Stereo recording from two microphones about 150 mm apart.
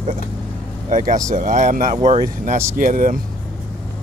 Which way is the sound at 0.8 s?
60° right (ahead or behind).